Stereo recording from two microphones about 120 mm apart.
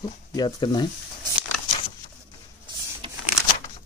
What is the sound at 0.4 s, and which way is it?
Speech, 35° left (ahead or behind).